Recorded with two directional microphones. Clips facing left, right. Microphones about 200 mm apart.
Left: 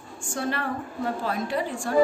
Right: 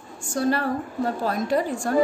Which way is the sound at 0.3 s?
40° right (ahead or behind).